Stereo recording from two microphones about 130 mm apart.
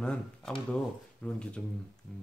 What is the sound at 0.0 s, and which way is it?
A man's voice, 5° left (ahead or behind).